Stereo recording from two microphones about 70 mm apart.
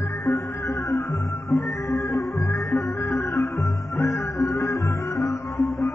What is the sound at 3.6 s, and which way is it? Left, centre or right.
Music, left.